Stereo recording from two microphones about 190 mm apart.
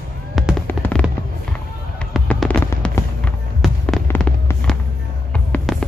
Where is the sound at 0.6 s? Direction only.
10° left (ahead or behind).